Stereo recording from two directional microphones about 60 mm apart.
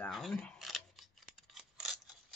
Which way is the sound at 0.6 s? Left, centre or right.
Centre.